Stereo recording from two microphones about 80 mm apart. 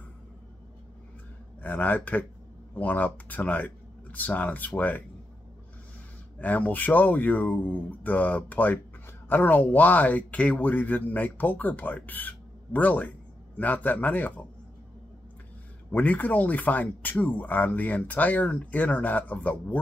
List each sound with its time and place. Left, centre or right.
1.6 s speech: left
6.3 s speech: left
15.9 s speech: left